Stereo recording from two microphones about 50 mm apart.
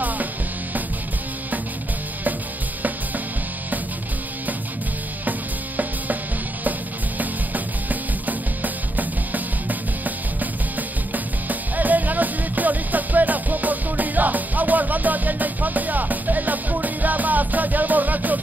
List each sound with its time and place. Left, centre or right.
7.2 s music: right